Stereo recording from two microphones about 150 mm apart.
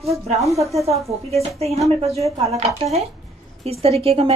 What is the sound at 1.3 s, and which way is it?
Speech, 45° right (ahead or behind).